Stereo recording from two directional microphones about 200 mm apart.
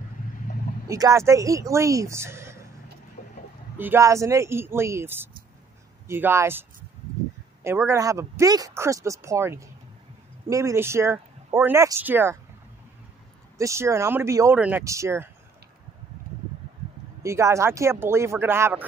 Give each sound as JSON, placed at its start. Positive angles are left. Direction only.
{"t": 0.8, "sound": "speech", "side_deg": -15}
{"t": 3.2, "sound": "a sound", "side_deg": 35}
{"t": 3.7, "sound": "speech", "side_deg": -10}
{"t": 7.6, "sound": "speech", "side_deg": -10}
{"t": 13.6, "sound": "speech", "side_deg": -15}
{"t": 17.2, "sound": "speech", "side_deg": -15}